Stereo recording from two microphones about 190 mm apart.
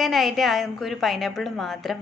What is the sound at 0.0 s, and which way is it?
A woman's voice, centre (ahead or behind).